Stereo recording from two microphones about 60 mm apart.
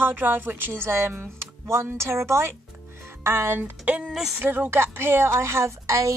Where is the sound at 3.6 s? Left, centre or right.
Right.